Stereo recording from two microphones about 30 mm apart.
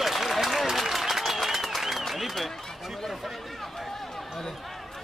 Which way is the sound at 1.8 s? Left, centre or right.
Centre.